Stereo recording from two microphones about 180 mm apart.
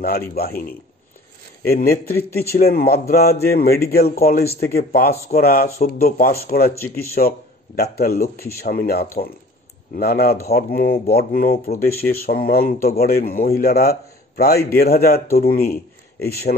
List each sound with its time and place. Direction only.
0.3 s speech: 55° left (ahead or behind)
2.1 s a man's voice: 15° left (ahead or behind)
2.5 s speech: 55° left (ahead or behind)